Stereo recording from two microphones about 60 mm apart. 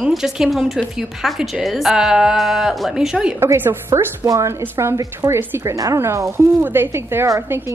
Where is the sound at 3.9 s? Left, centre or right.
Right.